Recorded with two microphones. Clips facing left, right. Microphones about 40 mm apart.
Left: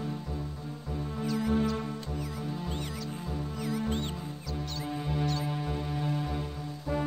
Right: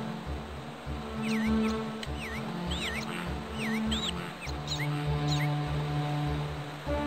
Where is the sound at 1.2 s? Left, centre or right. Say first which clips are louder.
Right 1 dB; right.